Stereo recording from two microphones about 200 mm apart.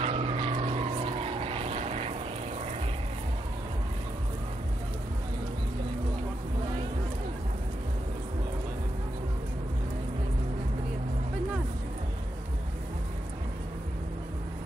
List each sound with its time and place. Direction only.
0.0 s vehicle: 30° right (ahead or behind)